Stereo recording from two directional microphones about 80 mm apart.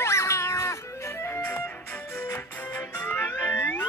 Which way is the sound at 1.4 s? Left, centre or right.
Centre.